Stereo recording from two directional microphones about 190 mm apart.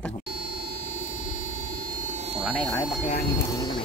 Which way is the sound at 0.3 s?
55° right (ahead or behind).